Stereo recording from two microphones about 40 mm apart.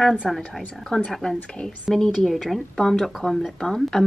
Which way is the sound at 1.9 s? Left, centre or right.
Centre.